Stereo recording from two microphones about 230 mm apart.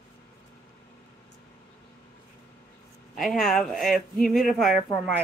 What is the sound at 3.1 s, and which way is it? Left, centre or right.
Speech, centre.